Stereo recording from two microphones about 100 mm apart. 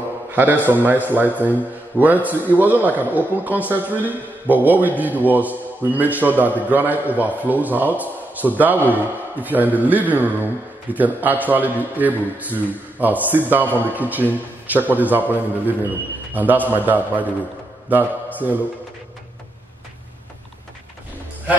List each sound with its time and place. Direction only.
0.3 s a man's voice: 20° right (ahead or behind)